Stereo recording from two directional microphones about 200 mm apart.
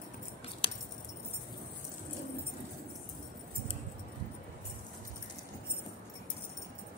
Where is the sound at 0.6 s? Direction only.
30° left (ahead or behind).